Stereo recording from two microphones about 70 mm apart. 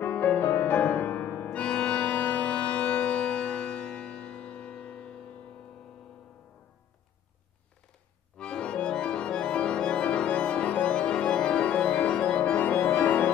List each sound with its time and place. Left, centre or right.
0.0 s music: left
1.5 s organ: centre
8.4 s music: centre